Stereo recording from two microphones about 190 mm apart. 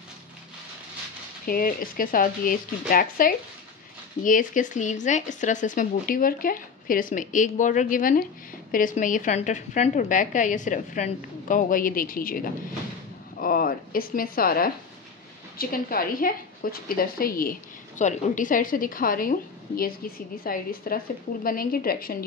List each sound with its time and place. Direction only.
1.4 s a woman's voice: 50° left (ahead or behind)